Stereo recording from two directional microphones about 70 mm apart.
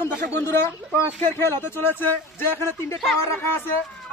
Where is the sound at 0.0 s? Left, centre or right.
Left.